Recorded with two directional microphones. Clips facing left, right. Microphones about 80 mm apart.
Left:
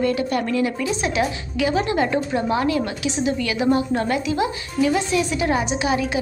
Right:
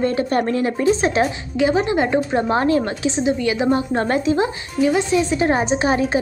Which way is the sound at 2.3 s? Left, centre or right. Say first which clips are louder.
Right 3 dB; right.